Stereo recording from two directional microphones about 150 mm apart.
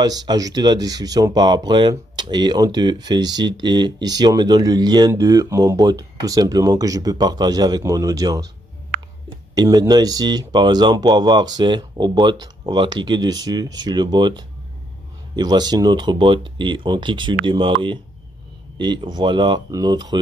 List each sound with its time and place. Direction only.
0.0 s speech: 25° right (ahead or behind)
9.6 s speech: 25° right (ahead or behind)